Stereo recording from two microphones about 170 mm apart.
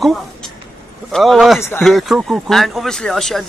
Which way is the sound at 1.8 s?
Centre (ahead or behind).